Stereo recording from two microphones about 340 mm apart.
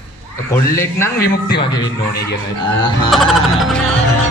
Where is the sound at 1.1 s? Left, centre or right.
Left.